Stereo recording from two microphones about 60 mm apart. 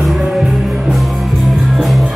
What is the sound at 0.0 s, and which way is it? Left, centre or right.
Music, centre.